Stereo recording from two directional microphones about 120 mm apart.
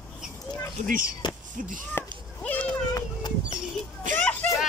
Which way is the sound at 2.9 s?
35° left (ahead or behind).